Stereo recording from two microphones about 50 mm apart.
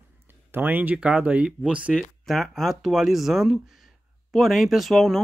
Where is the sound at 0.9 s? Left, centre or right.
Right.